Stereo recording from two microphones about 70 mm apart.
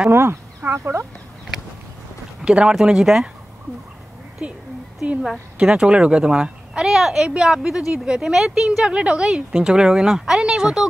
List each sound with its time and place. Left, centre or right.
0.1 s speech: right
2.4 s speech: centre
4.4 s speech: centre
5.6 s speech: centre